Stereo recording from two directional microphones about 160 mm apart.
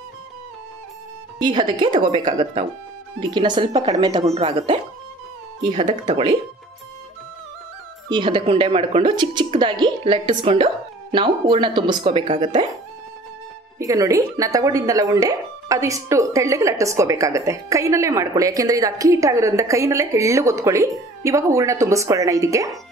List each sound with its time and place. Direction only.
1.4 s a woman's voice: 30° right (ahead or behind)
4.2 s a woman's voice: 40° right (ahead or behind)
5.7 s a woman's voice: 30° right (ahead or behind)
8.1 s a woman's voice: 30° right (ahead or behind)
13.7 s speech: 20° right (ahead or behind)